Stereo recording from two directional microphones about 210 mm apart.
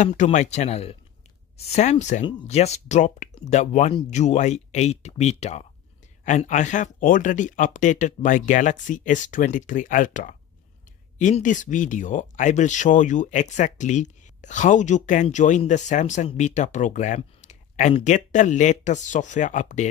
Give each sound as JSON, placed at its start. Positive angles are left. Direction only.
{"t": 0.0, "sound": "speech", "side_deg": 35}